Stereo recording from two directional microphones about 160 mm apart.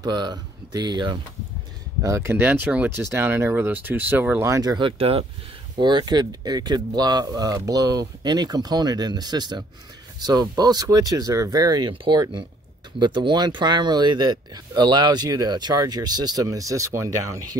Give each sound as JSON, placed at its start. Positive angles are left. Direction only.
{"t": 0.0, "sound": "speech", "side_deg": -25}
{"t": 2.0, "sound": "speech", "side_deg": -15}